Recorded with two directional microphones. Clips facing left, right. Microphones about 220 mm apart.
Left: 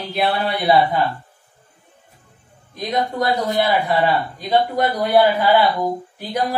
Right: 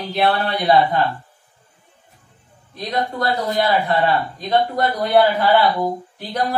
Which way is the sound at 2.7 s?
15° left (ahead or behind).